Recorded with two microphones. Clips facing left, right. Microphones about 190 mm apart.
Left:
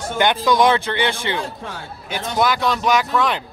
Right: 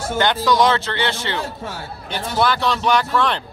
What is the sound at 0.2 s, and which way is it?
Speech, 15° left (ahead or behind).